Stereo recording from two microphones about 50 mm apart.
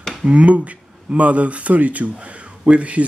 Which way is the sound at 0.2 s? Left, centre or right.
Right.